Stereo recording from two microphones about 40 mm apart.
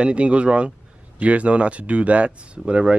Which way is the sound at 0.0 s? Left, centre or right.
Right.